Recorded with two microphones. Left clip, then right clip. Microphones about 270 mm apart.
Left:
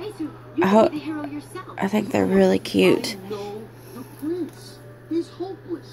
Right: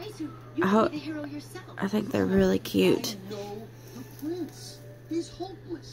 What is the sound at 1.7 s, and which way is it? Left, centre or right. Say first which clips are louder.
Speech: left 6 dB; right.